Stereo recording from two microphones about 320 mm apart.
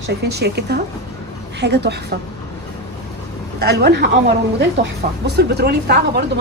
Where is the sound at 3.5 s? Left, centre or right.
Right.